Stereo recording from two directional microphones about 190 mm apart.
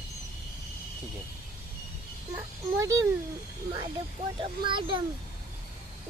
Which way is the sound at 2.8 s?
15° right (ahead or behind).